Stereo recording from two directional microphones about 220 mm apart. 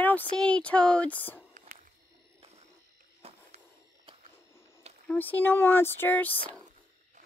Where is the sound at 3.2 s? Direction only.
25° right (ahead or behind).